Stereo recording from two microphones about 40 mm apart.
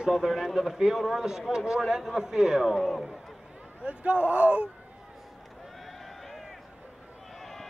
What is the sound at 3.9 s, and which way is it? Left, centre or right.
Speech, right.